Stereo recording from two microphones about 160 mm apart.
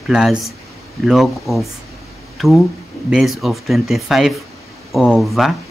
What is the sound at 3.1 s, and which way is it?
Speech, centre (ahead or behind).